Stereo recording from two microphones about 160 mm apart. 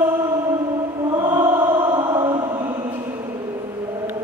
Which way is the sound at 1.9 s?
25° right (ahead or behind).